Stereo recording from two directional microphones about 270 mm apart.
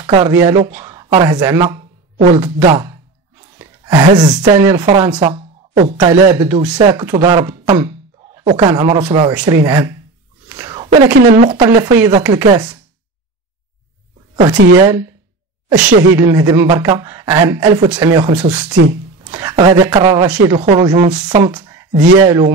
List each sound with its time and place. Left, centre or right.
0.0 s speech: centre
10.5 s whispering: centre
11.3 s speech: right
14.3 s speech: centre
16.2 s speech: centre